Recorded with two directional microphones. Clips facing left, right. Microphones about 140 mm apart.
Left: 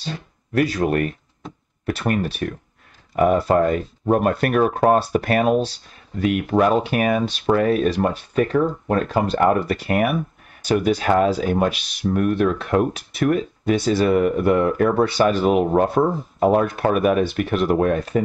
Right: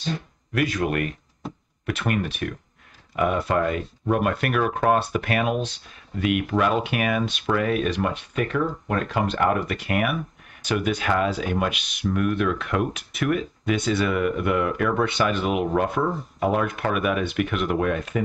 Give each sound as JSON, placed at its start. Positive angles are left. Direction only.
{"t": 0.0, "sound": "speech", "side_deg": 35}